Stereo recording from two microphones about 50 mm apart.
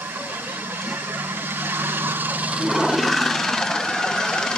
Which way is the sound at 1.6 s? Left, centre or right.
Right.